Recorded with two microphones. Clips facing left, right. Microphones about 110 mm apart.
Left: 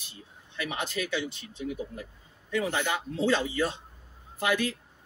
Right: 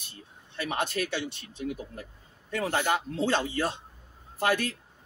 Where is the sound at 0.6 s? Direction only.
45° right (ahead or behind).